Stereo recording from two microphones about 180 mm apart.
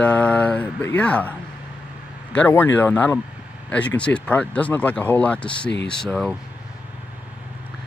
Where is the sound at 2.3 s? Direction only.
10° left (ahead or behind).